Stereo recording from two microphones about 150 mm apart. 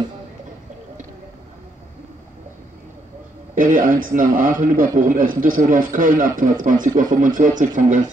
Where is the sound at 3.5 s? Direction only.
60° right (ahead or behind).